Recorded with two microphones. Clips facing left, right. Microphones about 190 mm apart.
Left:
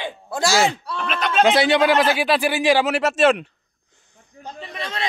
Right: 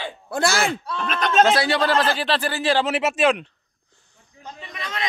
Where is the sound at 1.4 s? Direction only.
20° left (ahead or behind).